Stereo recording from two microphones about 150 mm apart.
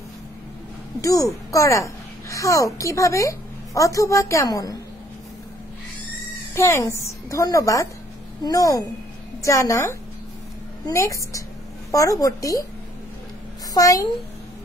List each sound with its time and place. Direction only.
1.0 s a child's voice: 20° left (ahead or behind)
6.5 s a child's voice: 20° left (ahead or behind)
13.7 s a child's voice: 25° left (ahead or behind)